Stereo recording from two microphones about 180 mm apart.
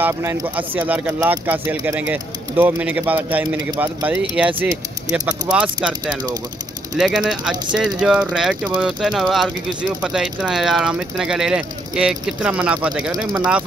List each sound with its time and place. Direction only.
0.0 s speech: 10° right (ahead or behind)
7.0 s speech: 5° right (ahead or behind)